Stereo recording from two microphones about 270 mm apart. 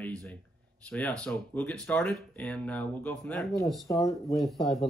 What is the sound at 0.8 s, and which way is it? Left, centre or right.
Speech, centre.